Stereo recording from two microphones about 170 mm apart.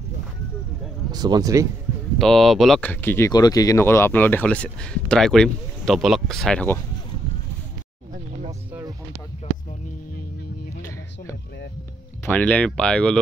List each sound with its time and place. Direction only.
1.1 s speech: 25° right (ahead or behind)
2.1 s speech: centre (ahead or behind)
8.5 s music: 20° right (ahead or behind)
12.3 s speech: 10° left (ahead or behind)